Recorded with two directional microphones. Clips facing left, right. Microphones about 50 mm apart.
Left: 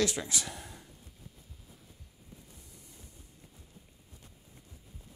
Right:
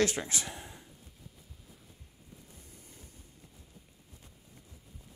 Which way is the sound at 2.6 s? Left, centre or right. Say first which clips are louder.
Right 1 dB; right.